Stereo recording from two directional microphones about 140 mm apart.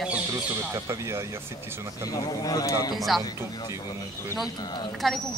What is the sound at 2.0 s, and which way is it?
Speech, 25° left (ahead or behind).